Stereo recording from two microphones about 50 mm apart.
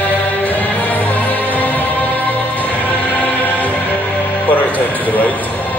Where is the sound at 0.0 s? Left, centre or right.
Left.